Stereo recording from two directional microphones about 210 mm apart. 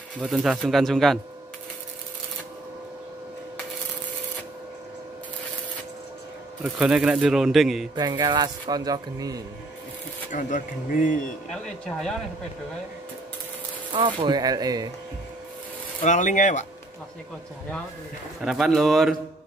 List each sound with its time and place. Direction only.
0.2 s a man's voice: 5° right (ahead or behind)
6.6 s a man's voice: 5° right (ahead or behind)
7.9 s speech: 20° right (ahead or behind)
10.3 s speech: 40° left (ahead or behind)
11.5 s a man's voice: centre (ahead or behind)
13.9 s speech: 20° right (ahead or behind)
16.0 s speech: 35° left (ahead or behind)
18.4 s a man's voice: centre (ahead or behind)